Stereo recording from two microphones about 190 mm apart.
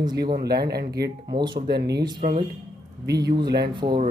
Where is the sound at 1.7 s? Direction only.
60° right (ahead or behind).